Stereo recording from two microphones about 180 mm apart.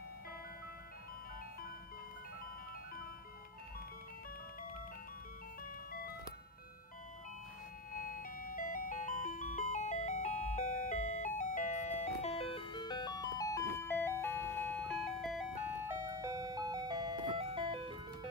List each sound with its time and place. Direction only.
7.9 s ice cream truck: 50° left (ahead or behind); by 15.5 s centre (ahead or behind)
15.8 s ice cream truck: 15° right (ahead or behind)